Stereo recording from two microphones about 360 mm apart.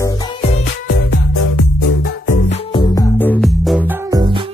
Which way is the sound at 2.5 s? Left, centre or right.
Centre.